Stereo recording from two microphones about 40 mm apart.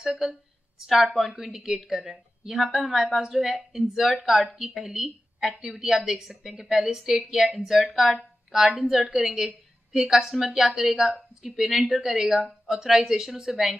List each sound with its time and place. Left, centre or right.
0.2 s a woman's voice: centre